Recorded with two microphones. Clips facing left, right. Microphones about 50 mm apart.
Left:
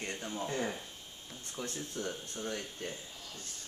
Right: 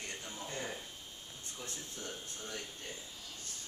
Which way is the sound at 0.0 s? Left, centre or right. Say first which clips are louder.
Left 6 dB; left.